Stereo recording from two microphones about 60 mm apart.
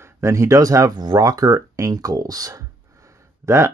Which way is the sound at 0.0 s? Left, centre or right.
Right.